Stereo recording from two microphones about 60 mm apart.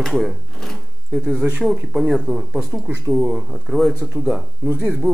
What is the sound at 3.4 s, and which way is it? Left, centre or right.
Speech, centre.